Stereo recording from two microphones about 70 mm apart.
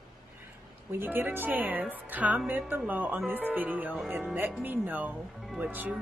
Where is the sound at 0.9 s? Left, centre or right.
Right.